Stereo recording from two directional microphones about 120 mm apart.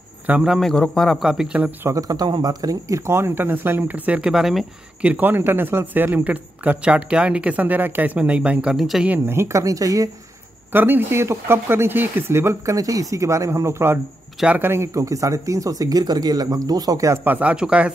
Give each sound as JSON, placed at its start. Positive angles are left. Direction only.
{"t": 0.3, "sound": "a man's voice", "side_deg": -5}
{"t": 1.9, "sound": "speech", "side_deg": -30}
{"t": 9.1, "sound": "speech", "side_deg": -20}
{"t": 10.7, "sound": "speech", "side_deg": -15}